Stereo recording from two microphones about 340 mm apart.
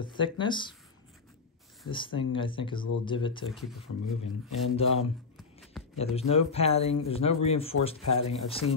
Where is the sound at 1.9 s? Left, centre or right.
Centre.